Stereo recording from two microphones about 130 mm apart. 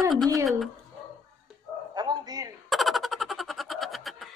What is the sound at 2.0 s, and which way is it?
Bow-wow, 30° right (ahead or behind).